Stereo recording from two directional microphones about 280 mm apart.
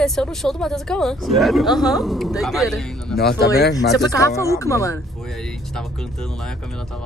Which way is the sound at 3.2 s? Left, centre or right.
Left.